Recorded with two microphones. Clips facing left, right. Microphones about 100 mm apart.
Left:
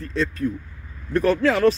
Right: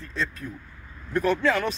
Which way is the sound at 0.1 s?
65° left (ahead or behind).